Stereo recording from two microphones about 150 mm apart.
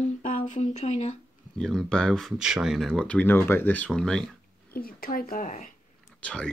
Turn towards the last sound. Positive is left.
turn(degrees=5)  # may be behind; listen again after turning